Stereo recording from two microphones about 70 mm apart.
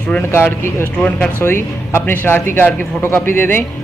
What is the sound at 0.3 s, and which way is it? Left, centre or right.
Speech, left.